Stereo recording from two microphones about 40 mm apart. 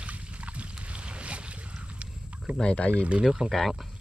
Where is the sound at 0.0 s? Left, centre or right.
Right.